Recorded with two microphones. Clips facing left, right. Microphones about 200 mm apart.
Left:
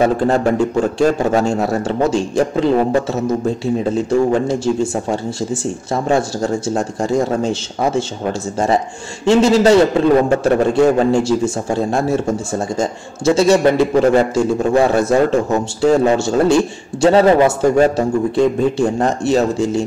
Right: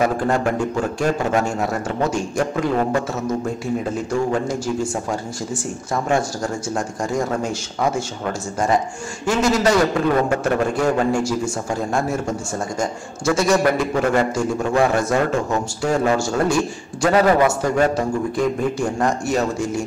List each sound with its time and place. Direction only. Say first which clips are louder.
0.0 s a man's voice: left 5 dB; 30° left (ahead or behind)
3.9 s a man's voice: left 8 dB; 25° left (ahead or behind)
6.0 s a man's voice: left 5 dB; 25° left (ahead or behind)
9.2 s a man's voice: left 7 dB; 25° left (ahead or behind)